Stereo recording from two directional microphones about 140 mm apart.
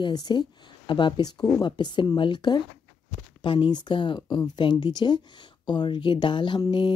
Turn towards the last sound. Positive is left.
turn(degrees=35)  # may be behind; listen again after turning